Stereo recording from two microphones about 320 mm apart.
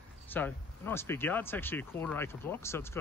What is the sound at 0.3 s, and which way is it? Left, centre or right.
Speech, centre.